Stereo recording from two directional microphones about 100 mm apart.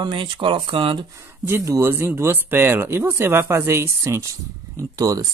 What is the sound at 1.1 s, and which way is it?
Speech, 25° right (ahead or behind).